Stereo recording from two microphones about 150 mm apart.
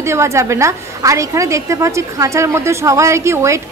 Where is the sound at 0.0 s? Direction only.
20° right (ahead or behind).